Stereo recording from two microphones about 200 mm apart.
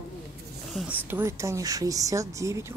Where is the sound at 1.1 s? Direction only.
10° right (ahead or behind).